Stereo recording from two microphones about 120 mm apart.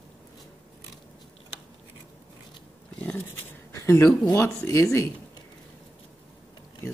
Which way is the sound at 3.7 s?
25° left (ahead or behind).